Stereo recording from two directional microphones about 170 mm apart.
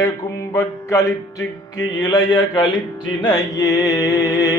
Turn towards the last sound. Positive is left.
turn(degrees=15)  # may be behind; listen again after turning